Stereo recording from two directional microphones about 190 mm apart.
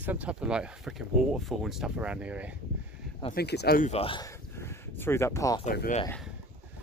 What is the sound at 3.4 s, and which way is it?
Speech, 60° left (ahead or behind).